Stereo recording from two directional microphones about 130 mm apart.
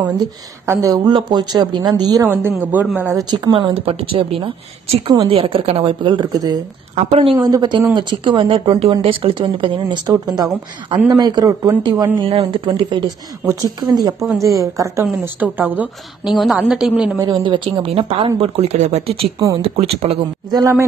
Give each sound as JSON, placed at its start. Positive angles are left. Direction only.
{"t": 0.7, "sound": "speech", "side_deg": -25}
{"t": 2.2, "sound": "a woman's voice", "side_deg": -15}
{"t": 3.0, "sound": "speech", "side_deg": -25}
{"t": 3.7, "sound": "a woman's voice", "side_deg": -45}
{"t": 7.1, "sound": "a woman's voice", "side_deg": -45}
{"t": 7.3, "sound": "a woman's voice", "side_deg": -30}
{"t": 12.3, "sound": "a woman's voice", "side_deg": -45}
{"t": 15.0, "sound": "a woman's voice", "side_deg": -15}
{"t": 17.2, "sound": "speech", "side_deg": -35}
{"t": 17.8, "sound": "a woman's voice", "side_deg": -45}